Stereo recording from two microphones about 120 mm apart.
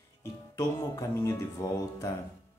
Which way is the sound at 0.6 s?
30° left (ahead or behind).